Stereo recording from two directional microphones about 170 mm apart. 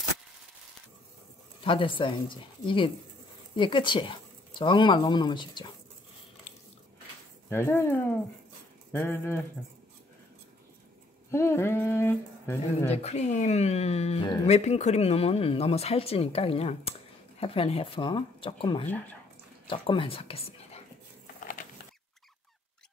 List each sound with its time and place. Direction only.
1.6 s speech: 30° left (ahead or behind)
7.4 s speech: 15° left (ahead or behind)
11.2 s speech: 15° left (ahead or behind)
12.9 s speech: 40° left (ahead or behind)